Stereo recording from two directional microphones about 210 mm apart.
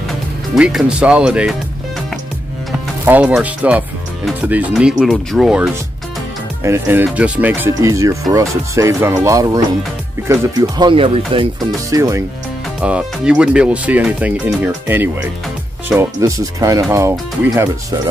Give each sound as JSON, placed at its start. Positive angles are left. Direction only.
{"t": 0.6, "sound": "speech", "side_deg": -5}
{"t": 3.1, "sound": "speech", "side_deg": -5}